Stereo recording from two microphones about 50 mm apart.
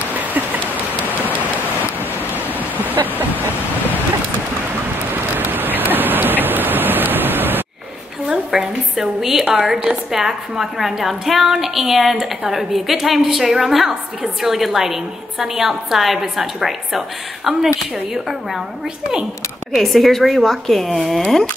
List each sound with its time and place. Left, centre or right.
0.1 s rain on surface: right
2.3 s waterfall: right
5.1 s a sound: right
8.3 s a sound: centre
9.5 s a woman's voice: centre
19.7 s a woman's voice: centre